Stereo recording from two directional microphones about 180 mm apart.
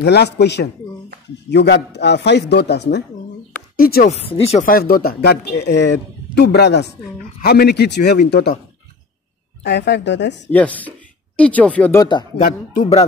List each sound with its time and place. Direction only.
0.0 s a man's voice: 65° left (ahead or behind)
3.7 s speech: 55° left (ahead or behind)
4.1 s speech: 35° left (ahead or behind)
4.6 s a man's voice: 55° left (ahead or behind)
9.6 s a man's voice: 70° left (ahead or behind)
10.5 s speech: 10° left (ahead or behind)
12.0 s speech: 25° left (ahead or behind)
12.4 s speech: 45° left (ahead or behind)